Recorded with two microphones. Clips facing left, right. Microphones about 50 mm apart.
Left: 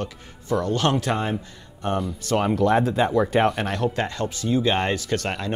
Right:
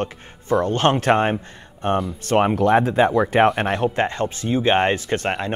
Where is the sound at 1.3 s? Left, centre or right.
Right.